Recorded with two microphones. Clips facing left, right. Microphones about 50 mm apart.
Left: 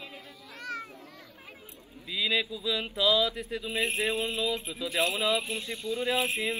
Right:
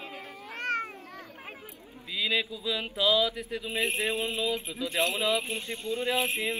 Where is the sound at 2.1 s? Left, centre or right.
Centre.